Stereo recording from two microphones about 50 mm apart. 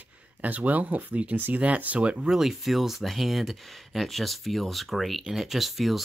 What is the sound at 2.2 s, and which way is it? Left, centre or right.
Speech, centre.